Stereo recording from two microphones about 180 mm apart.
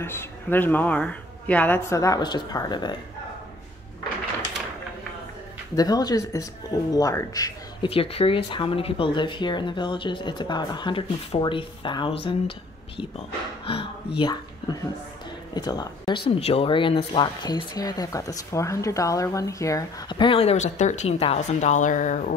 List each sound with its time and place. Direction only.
0.0 s speech: 10° left (ahead or behind)
5.8 s speech: 20° left (ahead or behind)
7.9 s speech: 30° left (ahead or behind)
16.3 s speech: 35° left (ahead or behind)